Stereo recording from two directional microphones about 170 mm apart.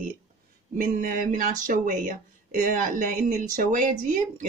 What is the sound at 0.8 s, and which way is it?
Speech, 55° right (ahead or behind).